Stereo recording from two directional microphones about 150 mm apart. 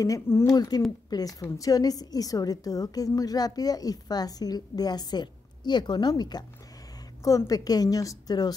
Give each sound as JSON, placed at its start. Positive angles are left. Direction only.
{"t": 0.0, "sound": "a woman's voice", "side_deg": 20}